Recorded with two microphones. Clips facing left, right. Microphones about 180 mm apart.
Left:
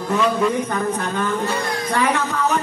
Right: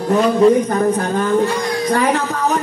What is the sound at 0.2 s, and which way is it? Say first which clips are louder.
A man's voice: right 8 dB; 35° right (ahead or behind).